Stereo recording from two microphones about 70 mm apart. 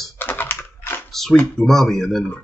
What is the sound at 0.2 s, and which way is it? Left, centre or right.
Typing, left.